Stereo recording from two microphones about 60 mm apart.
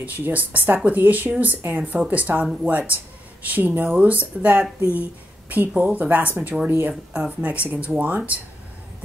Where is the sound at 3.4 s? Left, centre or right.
Right.